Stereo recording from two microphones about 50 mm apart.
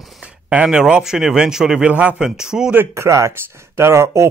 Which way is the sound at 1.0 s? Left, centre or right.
Centre.